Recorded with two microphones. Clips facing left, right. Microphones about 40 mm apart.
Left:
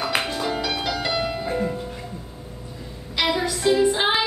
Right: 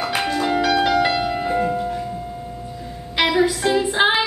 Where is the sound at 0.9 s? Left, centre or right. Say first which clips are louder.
Right 7 dB; right.